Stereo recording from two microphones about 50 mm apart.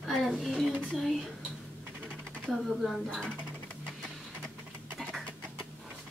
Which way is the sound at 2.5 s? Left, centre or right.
Centre.